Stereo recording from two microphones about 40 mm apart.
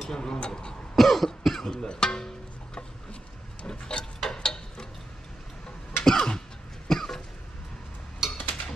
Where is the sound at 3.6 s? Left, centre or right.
Left.